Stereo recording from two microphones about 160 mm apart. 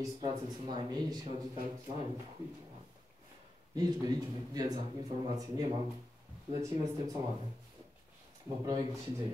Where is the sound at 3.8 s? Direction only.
25° right (ahead or behind).